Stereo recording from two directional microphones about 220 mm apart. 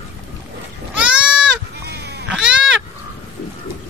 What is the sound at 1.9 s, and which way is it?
Goat, 50° right (ahead or behind).